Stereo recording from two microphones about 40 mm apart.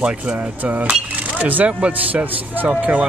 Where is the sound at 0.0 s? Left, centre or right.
Right.